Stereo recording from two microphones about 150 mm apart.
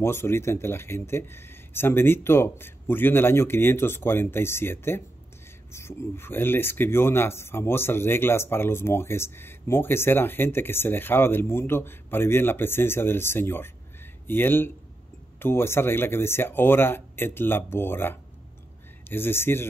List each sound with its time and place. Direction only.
0.0 s speech: 15° left (ahead or behind)